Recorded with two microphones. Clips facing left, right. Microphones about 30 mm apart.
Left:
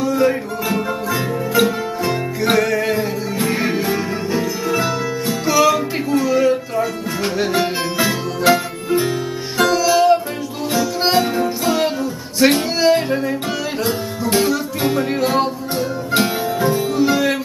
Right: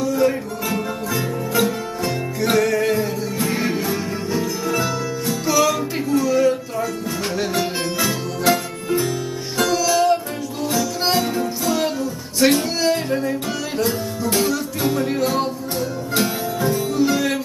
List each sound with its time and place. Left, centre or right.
0.0 s music: centre